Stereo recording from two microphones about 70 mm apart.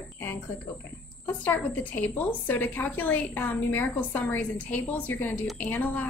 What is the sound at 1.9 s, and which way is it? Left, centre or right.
A woman's voice, left.